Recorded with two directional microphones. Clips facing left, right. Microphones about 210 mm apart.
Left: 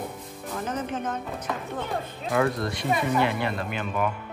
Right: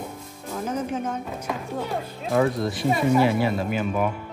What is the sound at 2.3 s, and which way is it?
Speech, centre (ahead or behind).